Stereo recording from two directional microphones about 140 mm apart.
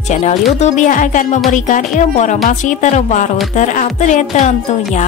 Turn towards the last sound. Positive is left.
turn(degrees=60)  # may be behind; listen again after turning